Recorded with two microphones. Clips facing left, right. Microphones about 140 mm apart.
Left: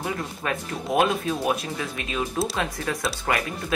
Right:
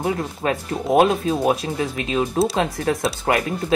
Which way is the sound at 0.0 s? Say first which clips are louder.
Right 7 dB; 30° right (ahead or behind).